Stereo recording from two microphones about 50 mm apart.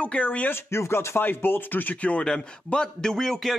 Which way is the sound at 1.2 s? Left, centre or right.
Left.